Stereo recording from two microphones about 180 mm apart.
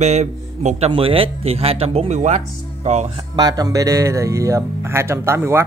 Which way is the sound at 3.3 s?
20° right (ahead or behind).